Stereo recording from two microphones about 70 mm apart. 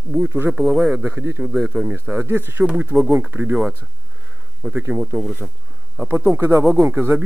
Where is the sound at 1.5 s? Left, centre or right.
Centre.